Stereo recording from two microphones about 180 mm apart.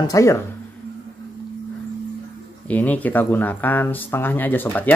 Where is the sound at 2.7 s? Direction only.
10° left (ahead or behind).